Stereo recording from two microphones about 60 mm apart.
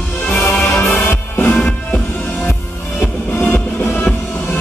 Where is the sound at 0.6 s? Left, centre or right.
Left.